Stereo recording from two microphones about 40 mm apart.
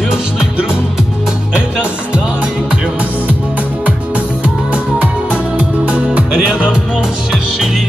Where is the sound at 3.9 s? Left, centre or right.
Right.